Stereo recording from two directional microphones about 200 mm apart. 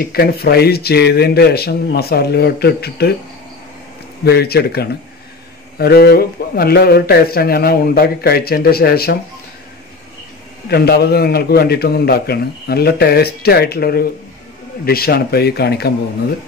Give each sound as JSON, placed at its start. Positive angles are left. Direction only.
{"t": 0.0, "sound": "a man's voice", "side_deg": 50}
{"t": 4.2, "sound": "a man's voice", "side_deg": 55}
{"t": 10.7, "sound": "a man's voice", "side_deg": 50}